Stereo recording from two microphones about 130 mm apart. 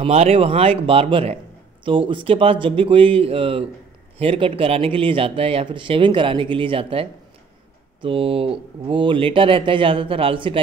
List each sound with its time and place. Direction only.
0.0 s speech: 50° right (ahead or behind)
1.9 s speech: 40° right (ahead or behind)